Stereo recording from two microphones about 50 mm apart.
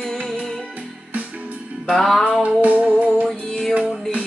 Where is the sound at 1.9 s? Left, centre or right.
Centre.